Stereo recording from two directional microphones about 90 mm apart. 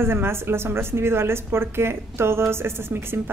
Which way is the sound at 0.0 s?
25° right (ahead or behind).